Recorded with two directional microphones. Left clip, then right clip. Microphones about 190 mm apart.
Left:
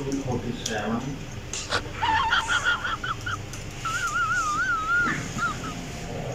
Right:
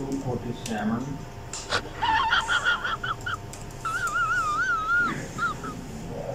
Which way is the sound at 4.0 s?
Centre (ahead or behind).